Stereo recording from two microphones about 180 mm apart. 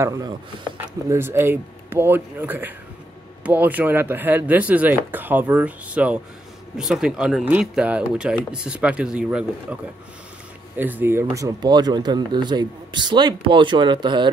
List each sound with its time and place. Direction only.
0.0 s speech: 20° right (ahead or behind)
10.8 s speech: 10° right (ahead or behind); by 14.3 s 25° right (ahead or behind)